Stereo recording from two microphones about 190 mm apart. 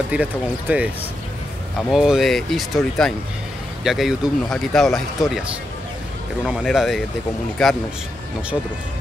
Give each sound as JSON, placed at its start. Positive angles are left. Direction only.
{"t": 0.1, "sound": "speech", "side_deg": -5}
{"t": 1.9, "sound": "speech", "side_deg": 0}